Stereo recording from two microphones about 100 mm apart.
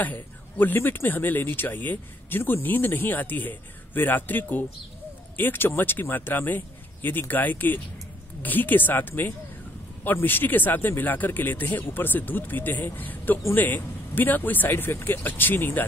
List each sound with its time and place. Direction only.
0.0 s speech: 20° left (ahead or behind)